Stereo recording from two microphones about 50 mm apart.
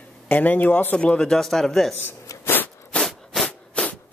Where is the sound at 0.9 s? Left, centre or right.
Left.